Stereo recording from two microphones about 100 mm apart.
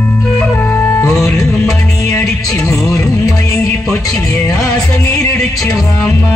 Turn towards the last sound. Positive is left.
turn(degrees=10)  # may be behind; listen again after turning